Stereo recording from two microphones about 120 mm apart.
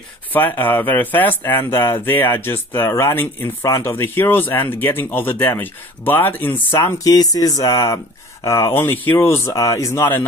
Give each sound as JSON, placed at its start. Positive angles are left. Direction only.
{"t": 0.3, "sound": "speech", "side_deg": 15}